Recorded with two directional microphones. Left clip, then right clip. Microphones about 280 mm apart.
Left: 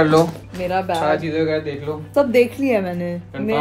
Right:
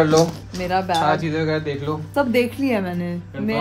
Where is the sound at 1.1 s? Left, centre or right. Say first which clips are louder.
Left 2 dB; right.